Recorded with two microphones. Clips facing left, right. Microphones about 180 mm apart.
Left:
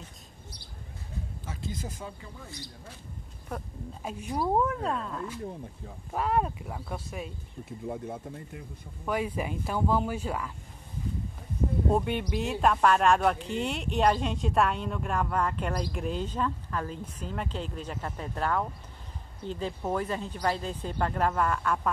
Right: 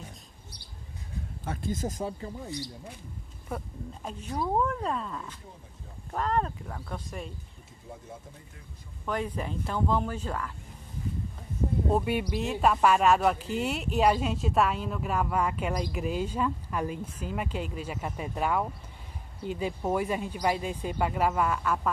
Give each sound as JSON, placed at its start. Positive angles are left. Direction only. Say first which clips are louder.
{"t": 1.4, "sound": "speech", "louder": "right 7 dB", "side_deg": -55}
{"t": 3.4, "sound": "speech", "louder": "right 1 dB", "side_deg": 0}
{"t": 7.8, "sound": "speech", "louder": "left 9 dB", "side_deg": 65}
{"t": 9.0, "sound": "speech", "louder": "left 2 dB", "side_deg": 10}
{"t": 11.9, "sound": "speech", "louder": "right 2 dB", "side_deg": -5}